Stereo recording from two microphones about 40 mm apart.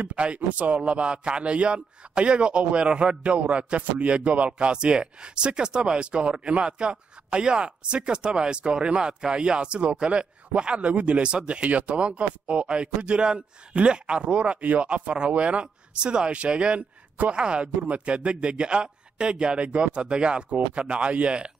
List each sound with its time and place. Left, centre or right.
0.0 s speech: right